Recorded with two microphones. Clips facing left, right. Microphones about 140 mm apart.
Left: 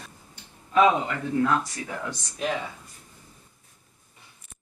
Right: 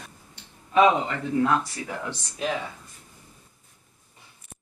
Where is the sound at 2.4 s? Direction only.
5° right (ahead or behind).